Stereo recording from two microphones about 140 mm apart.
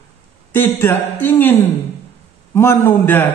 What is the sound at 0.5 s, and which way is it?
A man's voice, 15° left (ahead or behind).